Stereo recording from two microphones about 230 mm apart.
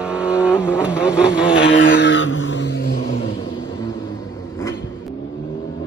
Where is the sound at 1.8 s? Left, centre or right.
Left.